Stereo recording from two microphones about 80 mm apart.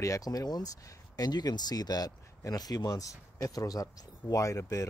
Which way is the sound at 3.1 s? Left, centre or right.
Left.